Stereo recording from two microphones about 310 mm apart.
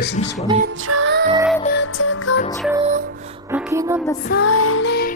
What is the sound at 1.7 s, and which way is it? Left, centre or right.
Music, left.